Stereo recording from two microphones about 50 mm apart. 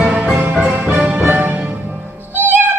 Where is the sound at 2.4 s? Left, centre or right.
Right.